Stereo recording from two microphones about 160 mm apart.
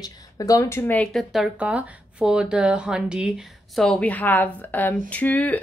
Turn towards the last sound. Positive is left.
turn(degrees=10)  # may be behind; listen again after turning